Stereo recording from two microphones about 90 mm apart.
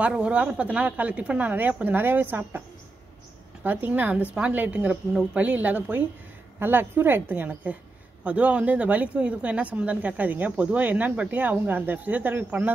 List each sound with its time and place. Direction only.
0.0 s speech: 10° right (ahead or behind)
3.6 s a woman's voice: 20° right (ahead or behind)